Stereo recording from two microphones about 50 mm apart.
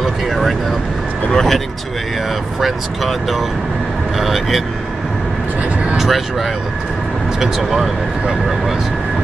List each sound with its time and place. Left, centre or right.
0.0 s vehicle: centre
1.3 s speech: centre
2.6 s speech: centre
5.9 s vehicle: centre
7.3 s speech: centre